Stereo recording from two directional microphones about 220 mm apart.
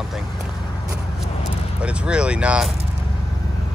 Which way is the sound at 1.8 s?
5° right (ahead or behind).